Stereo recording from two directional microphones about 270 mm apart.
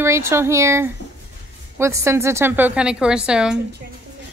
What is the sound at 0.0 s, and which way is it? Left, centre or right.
A woman's voice, centre.